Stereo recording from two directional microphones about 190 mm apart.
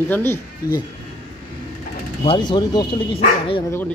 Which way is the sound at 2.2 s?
25° left (ahead or behind).